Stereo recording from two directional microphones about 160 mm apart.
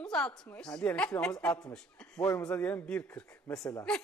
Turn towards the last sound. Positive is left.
turn(degrees=20)  # may be behind; listen again after turning